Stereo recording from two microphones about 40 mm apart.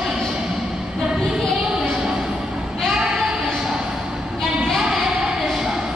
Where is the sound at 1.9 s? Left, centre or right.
Centre.